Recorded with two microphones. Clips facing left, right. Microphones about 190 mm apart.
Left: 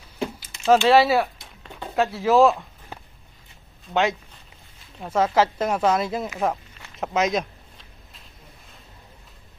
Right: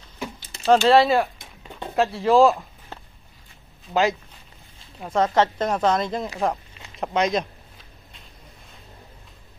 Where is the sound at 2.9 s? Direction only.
10° left (ahead or behind).